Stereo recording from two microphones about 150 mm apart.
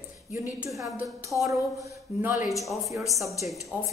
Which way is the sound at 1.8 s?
15° right (ahead or behind).